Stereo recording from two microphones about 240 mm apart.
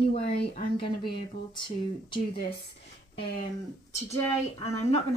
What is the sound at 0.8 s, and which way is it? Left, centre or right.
Speech, centre.